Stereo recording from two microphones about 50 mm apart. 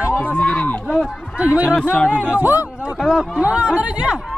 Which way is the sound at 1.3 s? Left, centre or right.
Right.